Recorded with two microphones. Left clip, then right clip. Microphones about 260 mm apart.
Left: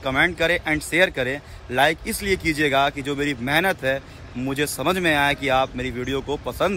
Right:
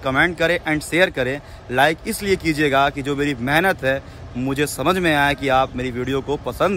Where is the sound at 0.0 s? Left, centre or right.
Centre.